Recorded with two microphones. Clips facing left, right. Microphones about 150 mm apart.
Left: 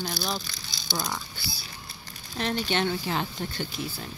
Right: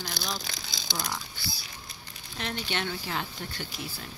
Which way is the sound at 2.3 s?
35° left (ahead or behind).